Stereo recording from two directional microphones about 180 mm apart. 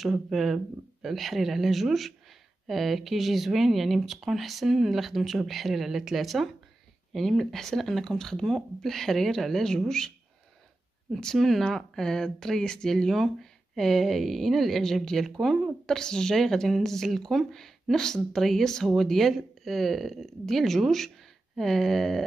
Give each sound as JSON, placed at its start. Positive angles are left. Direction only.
{"t": 0.0, "sound": "speech", "side_deg": 0}